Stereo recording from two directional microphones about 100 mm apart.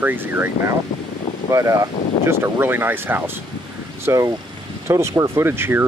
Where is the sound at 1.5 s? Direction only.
30° right (ahead or behind).